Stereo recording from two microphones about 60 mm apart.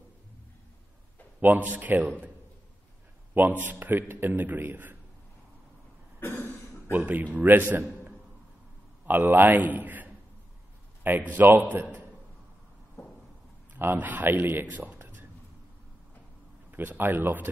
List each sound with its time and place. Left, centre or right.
1.4 s a man's voice: right
3.3 s a man's voice: right
6.1 s cough: left
6.9 s a man's voice: right
13.7 s a man's voice: right
15.0 s a sound: right
16.7 s a man's voice: right